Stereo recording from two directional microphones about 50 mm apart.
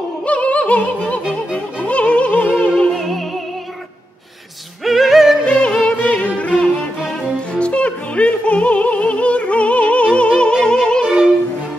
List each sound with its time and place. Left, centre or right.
0.2 s music: left
2.9 s opera: centre
4.8 s music: centre
5.5 s yodeling: left
5.9 s music: left